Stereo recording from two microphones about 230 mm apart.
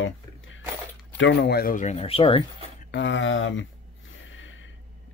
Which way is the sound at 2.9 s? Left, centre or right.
Left.